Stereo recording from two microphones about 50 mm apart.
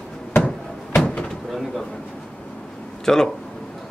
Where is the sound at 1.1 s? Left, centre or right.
Centre.